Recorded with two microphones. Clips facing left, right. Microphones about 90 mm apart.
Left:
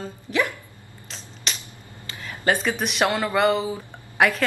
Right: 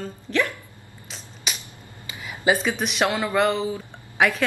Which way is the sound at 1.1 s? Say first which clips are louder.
Even; 5° right (ahead or behind).